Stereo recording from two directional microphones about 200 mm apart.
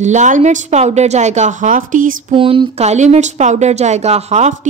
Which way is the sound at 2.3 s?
25° right (ahead or behind).